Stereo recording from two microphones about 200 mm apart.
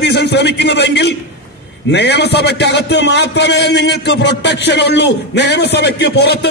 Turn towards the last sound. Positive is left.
turn(degrees=55)  # may be behind; listen again after turning